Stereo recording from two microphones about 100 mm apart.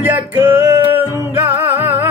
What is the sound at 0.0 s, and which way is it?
Music, 20° right (ahead or behind).